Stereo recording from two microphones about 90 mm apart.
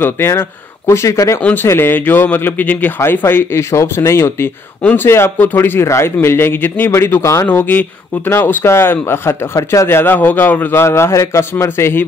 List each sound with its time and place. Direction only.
0.0 s speech: 25° left (ahead or behind)
1.4 s speech: 20° left (ahead or behind)
7.4 s speech: 20° left (ahead or behind)